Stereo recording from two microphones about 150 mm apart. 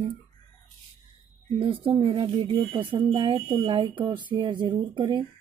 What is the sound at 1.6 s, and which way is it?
Speech, 35° right (ahead or behind).